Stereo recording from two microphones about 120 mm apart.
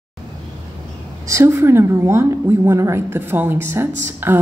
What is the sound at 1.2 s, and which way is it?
A woman's voice, 25° right (ahead or behind).